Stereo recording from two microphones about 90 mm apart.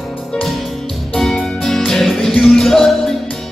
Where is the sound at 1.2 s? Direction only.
5° left (ahead or behind).